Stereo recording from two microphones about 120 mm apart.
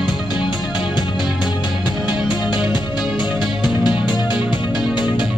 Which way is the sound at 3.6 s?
40° left (ahead or behind).